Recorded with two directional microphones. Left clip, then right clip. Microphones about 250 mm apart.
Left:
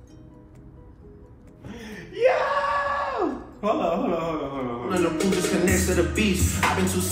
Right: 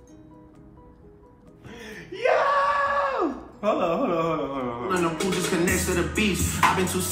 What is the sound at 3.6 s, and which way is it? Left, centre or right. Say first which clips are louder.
Speech: right 1 dB; centre.